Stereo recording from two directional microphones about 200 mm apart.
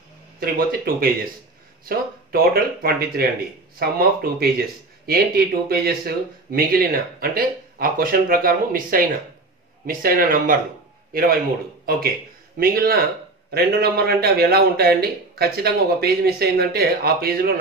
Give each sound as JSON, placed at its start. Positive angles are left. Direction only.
{"t": 0.4, "sound": "speech", "side_deg": -45}
{"t": 11.9, "sound": "speech", "side_deg": -45}